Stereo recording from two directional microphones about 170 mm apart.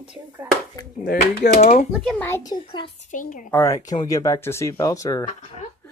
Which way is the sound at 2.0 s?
10° left (ahead or behind).